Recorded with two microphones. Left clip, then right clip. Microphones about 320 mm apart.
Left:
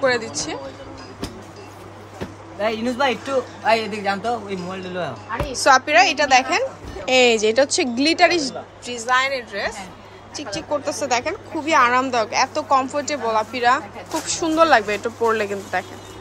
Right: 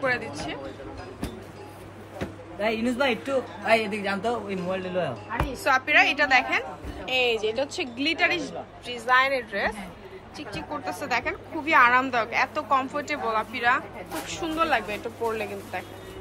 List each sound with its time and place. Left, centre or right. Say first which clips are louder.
0.0 s a woman's voice: left 7 dB; centre
2.6 s a woman's voice: left 4 dB; centre
5.5 s a woman's voice: left 7 dB; centre
7.1 s a woman's voice: left 9 dB; left